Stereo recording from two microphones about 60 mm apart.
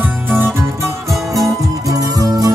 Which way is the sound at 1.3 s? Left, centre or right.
Right.